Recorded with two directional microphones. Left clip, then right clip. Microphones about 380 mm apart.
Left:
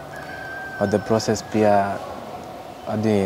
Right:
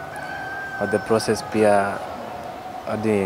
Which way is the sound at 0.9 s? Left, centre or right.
Centre.